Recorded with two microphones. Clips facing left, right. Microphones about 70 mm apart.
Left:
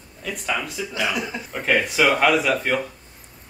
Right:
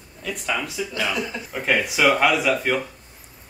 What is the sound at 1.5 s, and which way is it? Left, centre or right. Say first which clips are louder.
A man's voice: left 2 dB; centre.